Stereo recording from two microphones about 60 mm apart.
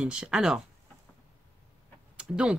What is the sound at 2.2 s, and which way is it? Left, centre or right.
Speech, centre.